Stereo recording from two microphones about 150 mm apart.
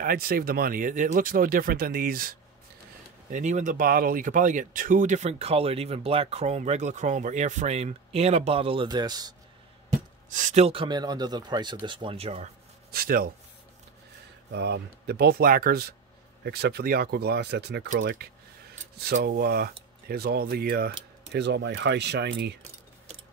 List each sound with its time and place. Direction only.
0.0 s speech: 75° right (ahead or behind)
3.3 s speech: 55° right (ahead or behind)
8.8 s speech: 25° right (ahead or behind)
10.3 s speech: 50° right (ahead or behind)
12.9 s speech: 85° right
14.7 s speech: 90° right